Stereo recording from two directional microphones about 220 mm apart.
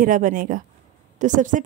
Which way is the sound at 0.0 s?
35° right (ahead or behind).